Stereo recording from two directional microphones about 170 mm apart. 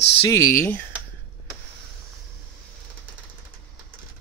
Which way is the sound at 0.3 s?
15° left (ahead or behind).